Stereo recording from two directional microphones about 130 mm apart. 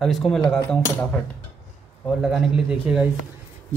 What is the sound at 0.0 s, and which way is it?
Cutlery, centre (ahead or behind).